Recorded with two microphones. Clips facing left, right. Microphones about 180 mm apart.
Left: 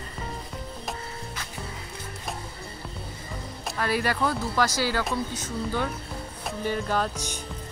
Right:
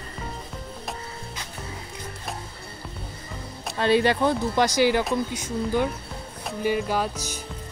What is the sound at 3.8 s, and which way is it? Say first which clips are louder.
Speech: right 6 dB; 25° right (ahead or behind).